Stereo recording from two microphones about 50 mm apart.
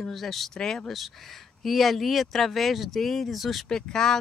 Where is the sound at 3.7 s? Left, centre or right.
Centre.